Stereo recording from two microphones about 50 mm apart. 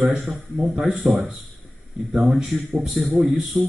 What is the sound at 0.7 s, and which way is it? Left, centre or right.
Speech, centre.